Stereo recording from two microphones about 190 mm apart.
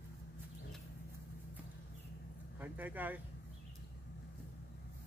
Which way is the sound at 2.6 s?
10° right (ahead or behind).